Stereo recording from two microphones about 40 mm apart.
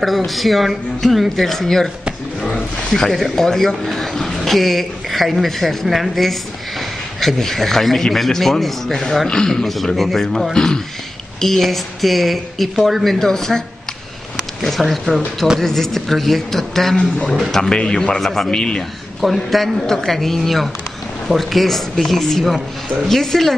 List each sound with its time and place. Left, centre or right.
0.3 s speech: centre
9.3 s a man's voice: centre
11.4 s speech: centre
16.9 s speech: left
17.3 s speech: centre
17.6 s a man's voice: centre
18.2 s a man's voice: centre
18.5 s speech: centre
19.2 s speech: centre